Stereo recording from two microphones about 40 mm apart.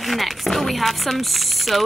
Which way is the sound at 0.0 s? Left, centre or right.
Centre.